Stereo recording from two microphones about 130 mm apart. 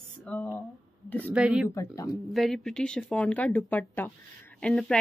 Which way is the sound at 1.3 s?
5° right (ahead or behind).